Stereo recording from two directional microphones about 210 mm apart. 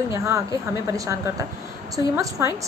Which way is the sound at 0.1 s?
15° right (ahead or behind).